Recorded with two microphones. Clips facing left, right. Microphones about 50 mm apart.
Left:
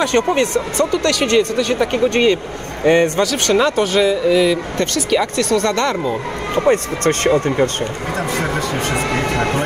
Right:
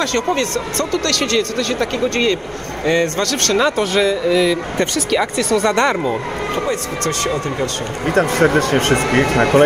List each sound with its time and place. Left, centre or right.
0.0 s speech: left
3.2 s speech: centre
5.8 s speech: right
6.6 s speech: left
8.1 s speech: right
9.0 s speech: right